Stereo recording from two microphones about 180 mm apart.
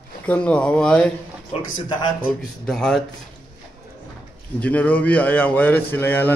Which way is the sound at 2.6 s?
5° left (ahead or behind).